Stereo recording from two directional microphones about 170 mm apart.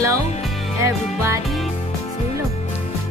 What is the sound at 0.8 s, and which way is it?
Music, 15° right (ahead or behind).